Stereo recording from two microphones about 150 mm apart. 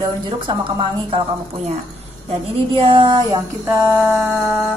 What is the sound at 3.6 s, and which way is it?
Music, 10° right (ahead or behind).